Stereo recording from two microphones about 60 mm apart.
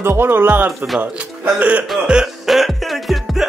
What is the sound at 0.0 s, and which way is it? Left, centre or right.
Speech, right.